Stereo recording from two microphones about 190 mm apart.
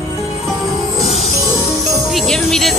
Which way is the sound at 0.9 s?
30° left (ahead or behind).